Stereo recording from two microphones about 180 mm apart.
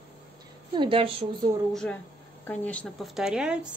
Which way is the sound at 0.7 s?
25° right (ahead or behind).